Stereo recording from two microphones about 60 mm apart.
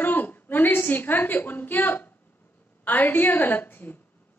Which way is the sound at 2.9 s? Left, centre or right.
Left.